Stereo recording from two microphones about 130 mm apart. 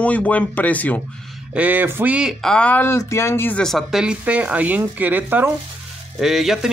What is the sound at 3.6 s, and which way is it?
Speech, centre (ahead or behind).